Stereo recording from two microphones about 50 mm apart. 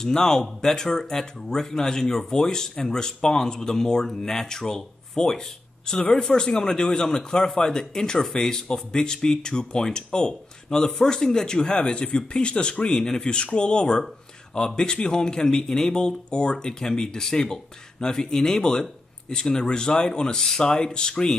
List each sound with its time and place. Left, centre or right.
0.0 s speech: centre